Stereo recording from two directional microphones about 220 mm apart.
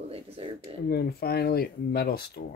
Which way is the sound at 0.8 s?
45° left (ahead or behind).